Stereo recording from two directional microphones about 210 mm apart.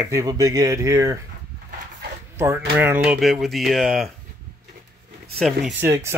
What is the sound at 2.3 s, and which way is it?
Speech, 10° right (ahead or behind).